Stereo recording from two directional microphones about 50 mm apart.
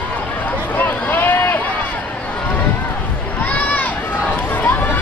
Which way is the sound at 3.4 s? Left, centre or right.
Left.